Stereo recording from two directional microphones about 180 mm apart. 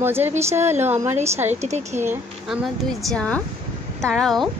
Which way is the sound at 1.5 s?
40° right (ahead or behind).